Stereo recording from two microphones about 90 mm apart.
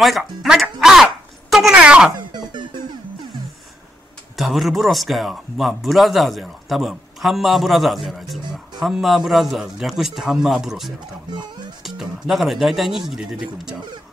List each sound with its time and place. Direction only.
0.4 s speech: 5° right (ahead or behind)
2.1 s music: 55° right (ahead or behind)
4.4 s speech: centre (ahead or behind)